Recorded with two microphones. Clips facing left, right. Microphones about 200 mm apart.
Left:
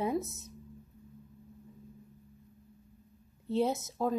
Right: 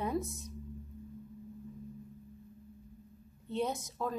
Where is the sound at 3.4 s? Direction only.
25° left (ahead or behind).